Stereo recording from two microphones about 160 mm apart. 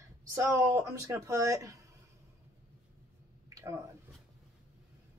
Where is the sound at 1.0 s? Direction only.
20° right (ahead or behind).